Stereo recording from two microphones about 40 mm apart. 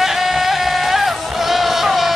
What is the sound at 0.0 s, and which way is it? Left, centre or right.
Music, centre.